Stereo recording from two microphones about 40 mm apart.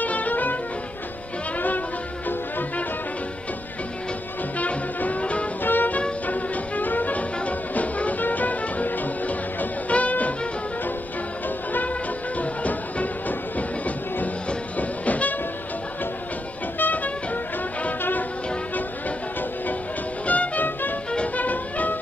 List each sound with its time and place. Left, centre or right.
0.0 s music: left
4.6 s music: left
5.6 s music: left
6.2 s music: left
11.4 s music: left
12.4 s music: left
16.7 s music: left
20.2 s music: left